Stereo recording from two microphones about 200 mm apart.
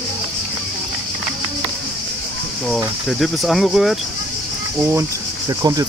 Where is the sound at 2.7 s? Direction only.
Centre (ahead or behind).